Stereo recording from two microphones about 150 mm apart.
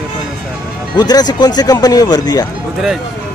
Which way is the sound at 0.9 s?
25° left (ahead or behind).